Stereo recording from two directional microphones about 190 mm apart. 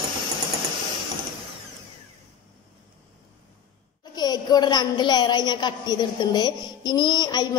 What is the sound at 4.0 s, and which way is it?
A woman's voice, 20° left (ahead or behind).